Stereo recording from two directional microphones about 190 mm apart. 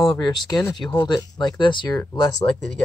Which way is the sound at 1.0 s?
20° left (ahead or behind).